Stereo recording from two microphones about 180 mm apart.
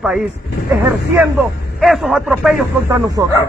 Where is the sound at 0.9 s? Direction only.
10° right (ahead or behind).